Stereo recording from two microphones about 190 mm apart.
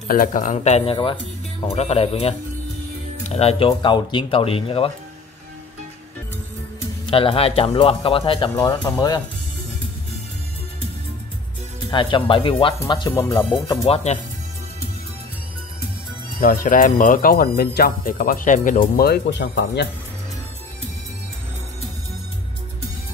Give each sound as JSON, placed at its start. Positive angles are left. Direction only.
{"t": 0.1, "sound": "speech", "side_deg": 45}
{"t": 7.1, "sound": "speech", "side_deg": 30}
{"t": 11.9, "sound": "speech", "side_deg": 25}
{"t": 13.8, "sound": "speech", "side_deg": 35}
{"t": 16.3, "sound": "speech", "side_deg": 50}